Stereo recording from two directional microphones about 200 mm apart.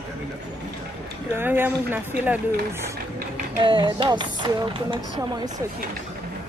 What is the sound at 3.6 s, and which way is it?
Speech, 25° right (ahead or behind).